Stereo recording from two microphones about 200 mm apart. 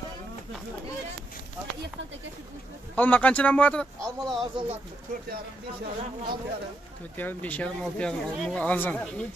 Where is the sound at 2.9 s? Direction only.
10° left (ahead or behind).